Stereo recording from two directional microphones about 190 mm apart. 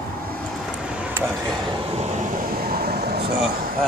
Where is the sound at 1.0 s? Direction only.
10° right (ahead or behind).